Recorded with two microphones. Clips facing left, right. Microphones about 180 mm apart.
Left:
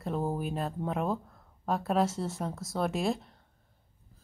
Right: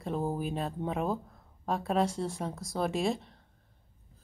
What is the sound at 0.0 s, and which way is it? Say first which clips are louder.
A woman's voice: even; centre (ahead or behind).